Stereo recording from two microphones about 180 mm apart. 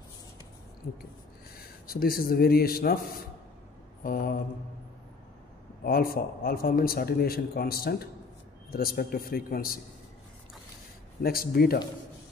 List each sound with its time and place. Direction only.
1.6 s speech: 55° left (ahead or behind)
4.0 s mantra: 50° left (ahead or behind)
5.9 s a man's voice: 55° left (ahead or behind)
11.2 s a man's voice: 55° left (ahead or behind)